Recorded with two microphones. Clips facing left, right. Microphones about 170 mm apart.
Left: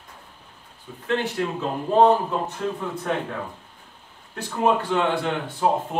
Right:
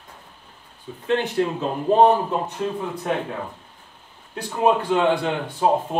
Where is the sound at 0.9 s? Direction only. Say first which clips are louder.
Right 2 dB; 25° right (ahead or behind).